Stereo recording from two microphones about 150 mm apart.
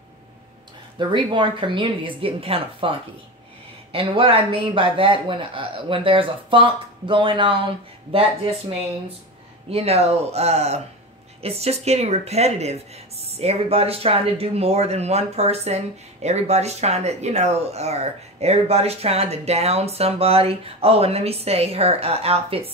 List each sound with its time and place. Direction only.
0.9 s speech: 30° right (ahead or behind)
3.9 s speech: 35° right (ahead or behind)